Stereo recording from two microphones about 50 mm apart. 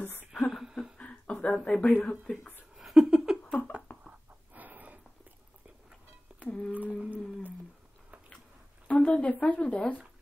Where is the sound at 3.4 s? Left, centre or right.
Left.